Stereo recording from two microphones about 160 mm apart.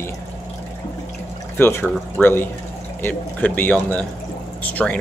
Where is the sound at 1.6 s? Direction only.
15° left (ahead or behind).